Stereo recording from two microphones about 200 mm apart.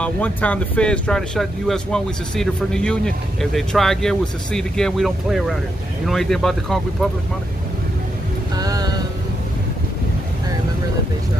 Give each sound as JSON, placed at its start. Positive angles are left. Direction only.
{"t": 0.0, "sound": "speech", "side_deg": 5}
{"t": 8.5, "sound": "music", "side_deg": -20}